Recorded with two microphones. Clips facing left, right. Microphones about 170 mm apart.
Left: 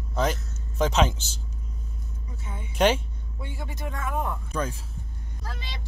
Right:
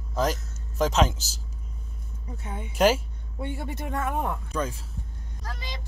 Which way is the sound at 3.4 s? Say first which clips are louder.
Right 4 dB; 60° right (ahead or behind).